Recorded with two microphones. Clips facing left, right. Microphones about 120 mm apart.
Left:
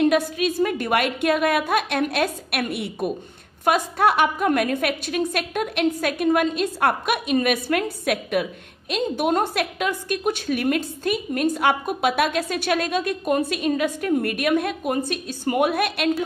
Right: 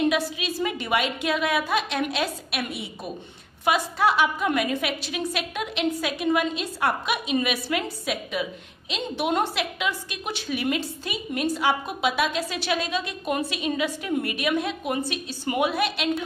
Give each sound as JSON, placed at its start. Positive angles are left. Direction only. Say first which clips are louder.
{"t": 0.4, "sound": "a woman's voice", "louder": "left 6 dB", "side_deg": 50}
{"t": 8.9, "sound": "a woman's voice", "louder": "left 4 dB", "side_deg": 45}